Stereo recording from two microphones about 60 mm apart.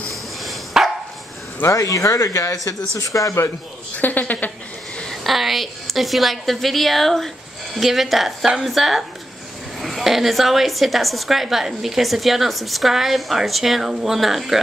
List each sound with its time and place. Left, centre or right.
0.1 s dog: centre
1.7 s speech: left
4.0 s speech: left
5.1 s a woman's voice: centre